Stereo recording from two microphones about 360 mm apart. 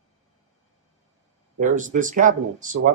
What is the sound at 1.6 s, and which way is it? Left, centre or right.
Speech, right.